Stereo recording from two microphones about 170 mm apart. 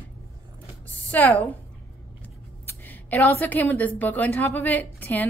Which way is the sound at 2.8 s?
10° left (ahead or behind).